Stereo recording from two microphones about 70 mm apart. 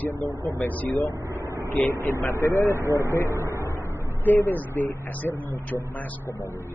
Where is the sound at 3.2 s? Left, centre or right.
Right.